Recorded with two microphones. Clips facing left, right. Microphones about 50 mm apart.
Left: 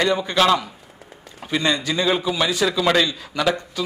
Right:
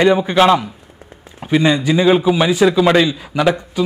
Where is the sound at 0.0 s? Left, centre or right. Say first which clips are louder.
Right 6 dB; right.